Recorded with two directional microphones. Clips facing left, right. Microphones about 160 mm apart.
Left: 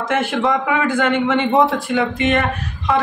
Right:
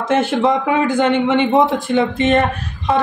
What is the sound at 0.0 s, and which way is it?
A man's voice, 25° right (ahead or behind).